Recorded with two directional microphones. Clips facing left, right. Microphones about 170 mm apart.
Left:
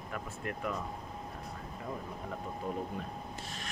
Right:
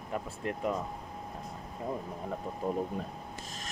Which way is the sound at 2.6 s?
40° right (ahead or behind).